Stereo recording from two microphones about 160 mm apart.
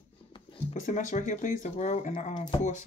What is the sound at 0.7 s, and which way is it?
Speech, 50° left (ahead or behind).